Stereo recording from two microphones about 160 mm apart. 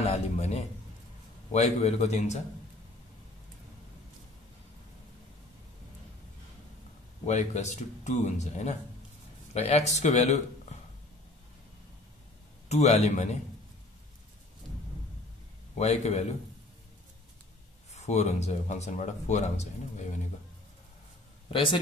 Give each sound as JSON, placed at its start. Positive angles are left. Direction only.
{"t": 0.0, "sound": "a man's voice", "side_deg": 40}
{"t": 7.2, "sound": "speech", "side_deg": 45}
{"t": 12.6, "sound": "speech", "side_deg": 45}
{"t": 15.8, "sound": "speech", "side_deg": 40}
{"t": 17.9, "sound": "speech", "side_deg": 45}
{"t": 21.5, "sound": "a man's voice", "side_deg": 30}